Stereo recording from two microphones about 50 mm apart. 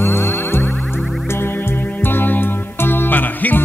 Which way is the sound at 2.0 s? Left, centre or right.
Left.